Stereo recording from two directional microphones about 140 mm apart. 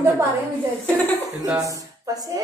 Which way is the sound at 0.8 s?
15° left (ahead or behind).